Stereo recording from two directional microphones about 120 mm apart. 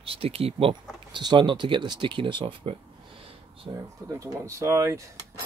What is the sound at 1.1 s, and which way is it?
Speech, 40° right (ahead or behind).